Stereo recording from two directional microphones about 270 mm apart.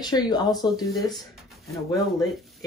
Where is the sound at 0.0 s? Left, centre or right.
Centre.